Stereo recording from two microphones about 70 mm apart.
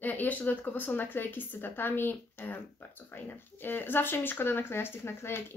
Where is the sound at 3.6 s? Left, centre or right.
Left.